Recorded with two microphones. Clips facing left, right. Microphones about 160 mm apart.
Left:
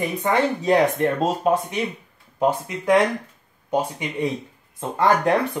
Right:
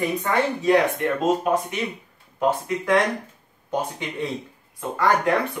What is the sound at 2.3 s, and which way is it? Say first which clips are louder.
Speech: left 1 dB; 15° left (ahead or behind).